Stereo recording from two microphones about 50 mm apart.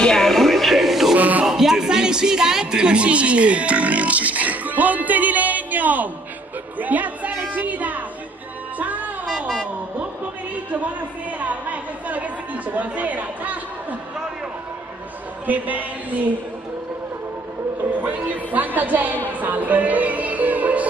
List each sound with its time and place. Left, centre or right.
0.0 s music: centre
1.1 s music: right
1.4 s a sound: centre; by 6.0 s right
6.8 s a woman's voice: right
8.7 s music: right
11.3 s a woman's voice: right
15.4 s a woman's voice: right
18.0 s a woman's voice: right